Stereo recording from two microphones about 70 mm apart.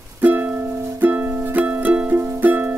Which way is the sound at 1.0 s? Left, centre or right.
Right.